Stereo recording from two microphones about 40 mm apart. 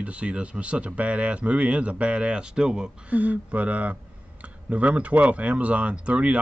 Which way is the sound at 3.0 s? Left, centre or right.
Right.